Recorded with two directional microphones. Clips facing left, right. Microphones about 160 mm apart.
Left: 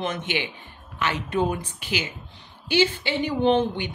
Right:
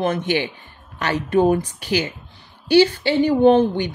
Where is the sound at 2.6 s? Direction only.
40° right (ahead or behind).